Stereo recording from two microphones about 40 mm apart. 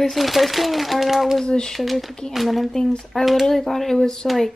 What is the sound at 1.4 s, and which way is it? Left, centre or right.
Speech, left.